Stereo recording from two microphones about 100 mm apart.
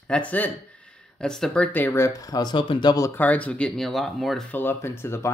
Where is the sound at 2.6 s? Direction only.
50° left (ahead or behind).